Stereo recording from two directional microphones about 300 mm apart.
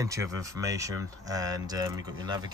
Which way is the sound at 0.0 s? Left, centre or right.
Centre.